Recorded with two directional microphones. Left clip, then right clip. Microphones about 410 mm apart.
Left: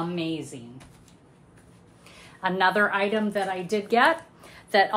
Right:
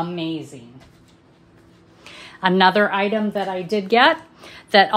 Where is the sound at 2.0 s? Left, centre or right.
Right.